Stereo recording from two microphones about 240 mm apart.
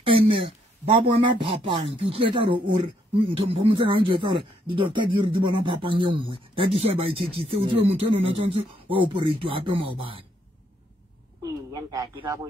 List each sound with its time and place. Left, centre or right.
0.0 s speech: right
11.7 s speech: centre